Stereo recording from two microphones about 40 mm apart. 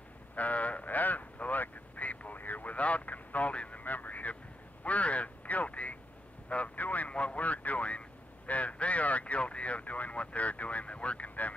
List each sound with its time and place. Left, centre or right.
0.4 s vehicle: left
3.8 s a sound: left
4.8 s quack: left
6.5 s vehicle: left